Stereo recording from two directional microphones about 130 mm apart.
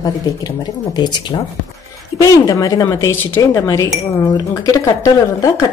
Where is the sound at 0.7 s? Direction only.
30° left (ahead or behind).